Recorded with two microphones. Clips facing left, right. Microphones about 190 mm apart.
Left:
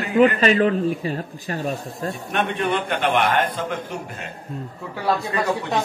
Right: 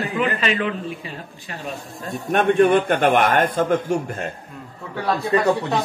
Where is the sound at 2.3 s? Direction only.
45° right (ahead or behind).